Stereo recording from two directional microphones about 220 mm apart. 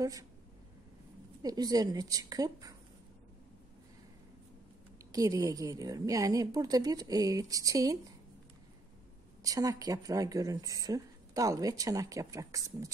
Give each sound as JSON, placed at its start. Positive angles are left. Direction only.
{"t": 0.0, "sound": "speech", "side_deg": -15}
{"t": 1.4, "sound": "speech", "side_deg": -15}
{"t": 5.1, "sound": "speech", "side_deg": -15}
{"t": 9.4, "sound": "speech", "side_deg": -15}